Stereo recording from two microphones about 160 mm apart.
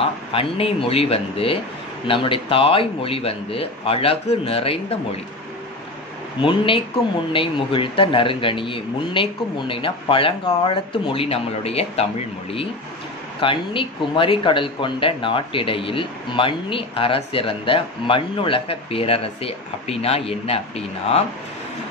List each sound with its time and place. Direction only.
0.3 s speech: 35° left (ahead or behind)
6.4 s speech: 35° left (ahead or behind)
13.4 s speech: 30° left (ahead or behind)